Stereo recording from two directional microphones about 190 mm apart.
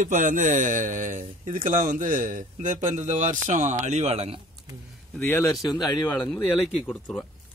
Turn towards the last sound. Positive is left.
turn(degrees=0)  # may be behind; listen again after turning